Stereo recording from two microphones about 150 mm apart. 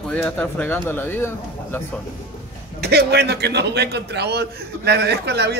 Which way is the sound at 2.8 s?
90° right.